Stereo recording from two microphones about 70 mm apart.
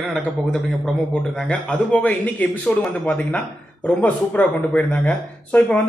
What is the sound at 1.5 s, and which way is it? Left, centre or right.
Speech, centre.